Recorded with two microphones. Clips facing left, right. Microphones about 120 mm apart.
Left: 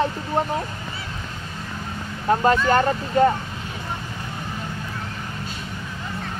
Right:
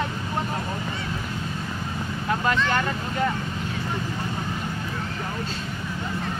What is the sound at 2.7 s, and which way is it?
Speech, 40° left (ahead or behind).